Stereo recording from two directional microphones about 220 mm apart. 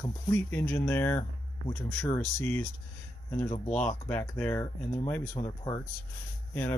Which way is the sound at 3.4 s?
30° left (ahead or behind).